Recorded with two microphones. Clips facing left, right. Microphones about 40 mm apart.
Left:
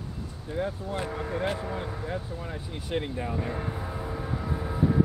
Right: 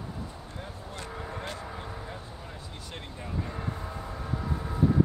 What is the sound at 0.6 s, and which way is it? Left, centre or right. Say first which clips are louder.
Speech: left 12 dB; centre.